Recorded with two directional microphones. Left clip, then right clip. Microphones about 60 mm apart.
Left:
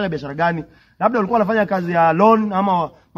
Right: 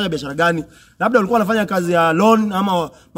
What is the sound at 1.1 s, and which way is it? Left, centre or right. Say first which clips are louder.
A man's voice: right 4 dB; right.